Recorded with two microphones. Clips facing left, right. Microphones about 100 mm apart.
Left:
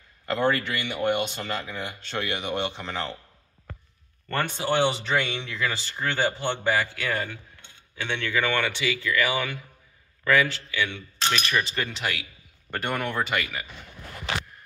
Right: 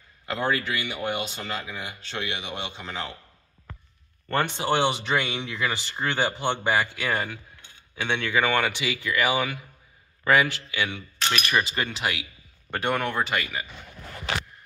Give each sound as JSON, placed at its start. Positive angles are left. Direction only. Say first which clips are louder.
{"t": 0.3, "sound": "a man's voice", "louder": "left 2 dB", "side_deg": -5}
{"t": 4.3, "sound": "speech", "louder": "right 2 dB", "side_deg": -20}